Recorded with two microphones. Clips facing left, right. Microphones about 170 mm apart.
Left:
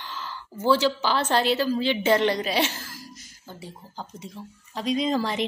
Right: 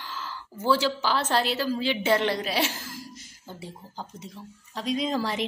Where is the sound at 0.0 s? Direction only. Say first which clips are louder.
Left 1 dB; 5° right (ahead or behind).